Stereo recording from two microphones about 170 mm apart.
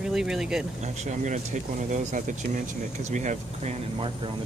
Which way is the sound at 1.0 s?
45° right (ahead or behind).